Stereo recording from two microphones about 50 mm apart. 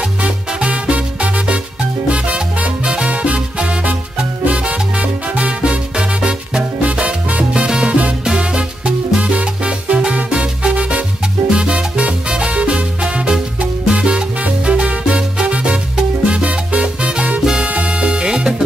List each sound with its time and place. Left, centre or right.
0.2 s music: right
2.0 s salsa music: right
4.5 s music: right
8.3 s salsa music: centre
10.3 s music: right
11.5 s salsa music: right
17.8 s music: centre